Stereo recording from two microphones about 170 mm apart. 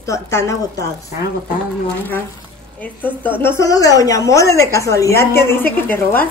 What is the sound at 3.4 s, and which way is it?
Speech, 15° left (ahead or behind).